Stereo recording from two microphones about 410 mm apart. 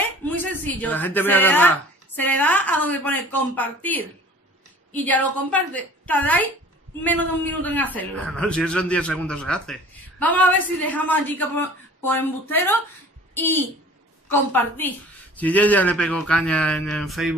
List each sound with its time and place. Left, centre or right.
0.0 s a woman's voice: centre